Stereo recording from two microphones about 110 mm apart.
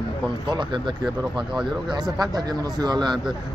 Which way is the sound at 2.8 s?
40° right (ahead or behind).